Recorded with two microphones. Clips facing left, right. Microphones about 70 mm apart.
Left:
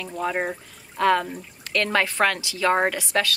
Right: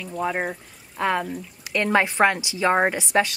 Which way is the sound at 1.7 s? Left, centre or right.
Centre.